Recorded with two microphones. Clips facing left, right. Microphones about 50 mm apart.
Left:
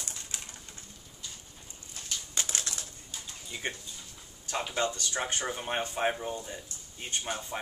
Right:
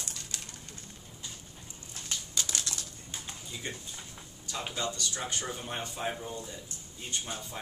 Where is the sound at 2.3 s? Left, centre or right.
Left.